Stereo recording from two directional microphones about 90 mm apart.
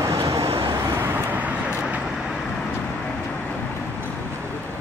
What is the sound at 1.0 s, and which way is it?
Vehicle, 25° right (ahead or behind).